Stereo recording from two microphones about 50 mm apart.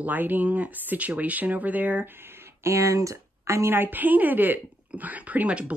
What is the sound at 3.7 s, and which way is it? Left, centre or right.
A woman's voice, right.